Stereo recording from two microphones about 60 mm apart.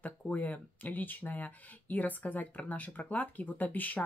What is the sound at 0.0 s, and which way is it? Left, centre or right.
Speech, left.